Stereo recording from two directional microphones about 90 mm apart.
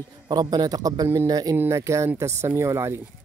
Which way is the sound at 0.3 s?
45° right (ahead or behind).